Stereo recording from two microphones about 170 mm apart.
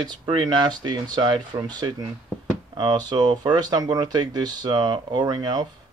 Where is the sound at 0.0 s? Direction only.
30° right (ahead or behind).